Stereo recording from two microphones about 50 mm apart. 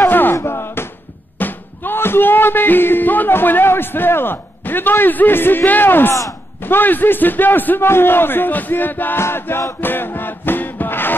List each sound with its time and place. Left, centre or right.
0.1 s music: left
0.4 s a sound: left
1.4 s music: left
6.6 s a man's voice: left
9.2 s battle cry: left